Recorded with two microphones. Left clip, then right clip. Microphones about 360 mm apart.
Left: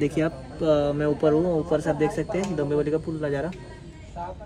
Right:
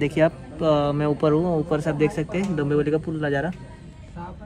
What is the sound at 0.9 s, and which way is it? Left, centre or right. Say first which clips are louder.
A man's voice: even; right.